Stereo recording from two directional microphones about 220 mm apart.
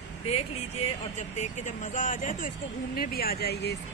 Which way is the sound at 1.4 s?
35° left (ahead or behind).